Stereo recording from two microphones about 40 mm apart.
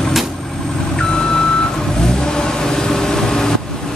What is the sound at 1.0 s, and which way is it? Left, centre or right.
Vehicle, centre.